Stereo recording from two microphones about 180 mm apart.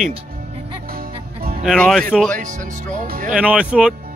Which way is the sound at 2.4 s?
45° right (ahead or behind).